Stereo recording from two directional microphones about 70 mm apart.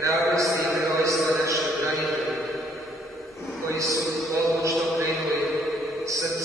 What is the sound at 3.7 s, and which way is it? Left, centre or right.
A man's voice, right.